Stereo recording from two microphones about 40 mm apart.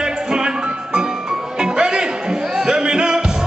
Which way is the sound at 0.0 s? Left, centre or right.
Centre.